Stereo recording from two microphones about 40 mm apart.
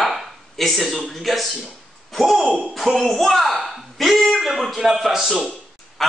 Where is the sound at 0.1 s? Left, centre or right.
Centre.